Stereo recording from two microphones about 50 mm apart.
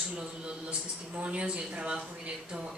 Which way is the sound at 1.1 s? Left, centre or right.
Right.